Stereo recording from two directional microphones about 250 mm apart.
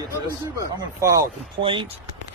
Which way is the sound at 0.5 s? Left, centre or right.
Centre.